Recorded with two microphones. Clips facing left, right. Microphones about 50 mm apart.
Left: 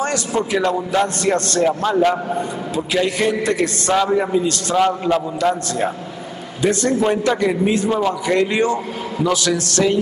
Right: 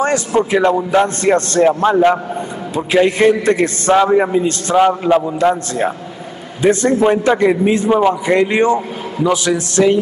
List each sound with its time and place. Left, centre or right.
0.0 s a man's voice: right